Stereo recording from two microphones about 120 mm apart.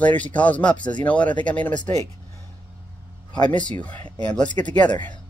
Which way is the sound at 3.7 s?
10° left (ahead or behind).